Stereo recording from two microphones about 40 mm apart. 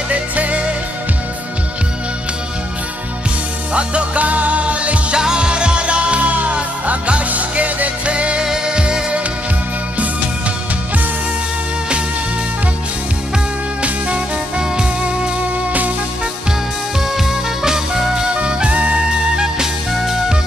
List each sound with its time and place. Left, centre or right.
0.1 s music: right
3.7 s music: right
5.1 s music: centre
13.8 s music: right
17.1 s music: centre; by 18.9 s right
19.3 s music: centre